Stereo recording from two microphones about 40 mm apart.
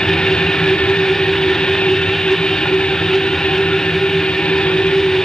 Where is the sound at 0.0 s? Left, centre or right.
Centre.